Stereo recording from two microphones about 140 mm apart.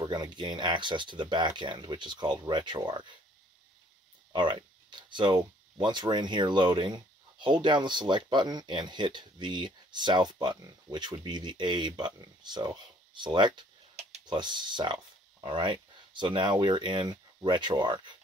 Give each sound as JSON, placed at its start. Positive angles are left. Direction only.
{"t": 0.0, "sound": "a sound", "side_deg": -30}
{"t": 0.6, "sound": "speech", "side_deg": -35}
{"t": 4.3, "sound": "speech", "side_deg": -35}